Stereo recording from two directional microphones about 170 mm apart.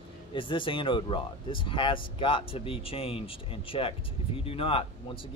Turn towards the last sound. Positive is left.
turn(degrees=30)  # may be behind; listen again after turning